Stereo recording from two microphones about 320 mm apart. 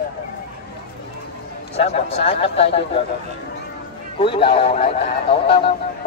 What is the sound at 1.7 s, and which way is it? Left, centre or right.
Speech, centre.